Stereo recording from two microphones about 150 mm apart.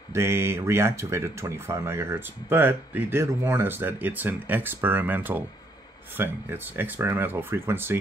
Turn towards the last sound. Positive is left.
turn(degrees=-15)  # may be behind; listen again after turning